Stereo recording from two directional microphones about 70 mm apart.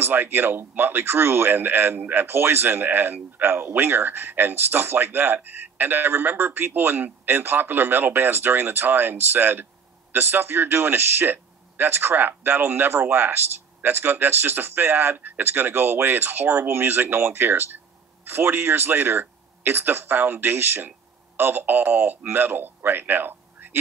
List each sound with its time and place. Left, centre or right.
0.0 s speech: right